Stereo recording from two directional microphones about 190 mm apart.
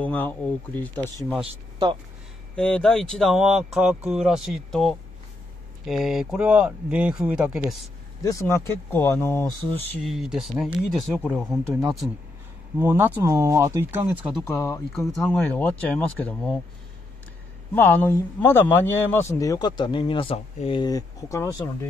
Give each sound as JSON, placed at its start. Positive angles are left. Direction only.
{"t": 0.0, "sound": "speech", "side_deg": 10}
{"t": 1.4, "sound": "speech", "side_deg": -30}
{"t": 2.5, "sound": "speech", "side_deg": 5}
{"t": 8.2, "sound": "speech", "side_deg": 15}
{"t": 10.0, "sound": "speech", "side_deg": 0}
{"t": 12.7, "sound": "speech", "side_deg": -10}
{"t": 14.4, "sound": "speech", "side_deg": 15}
{"t": 14.9, "sound": "speech", "side_deg": 0}
{"t": 17.7, "sound": "speech", "side_deg": 10}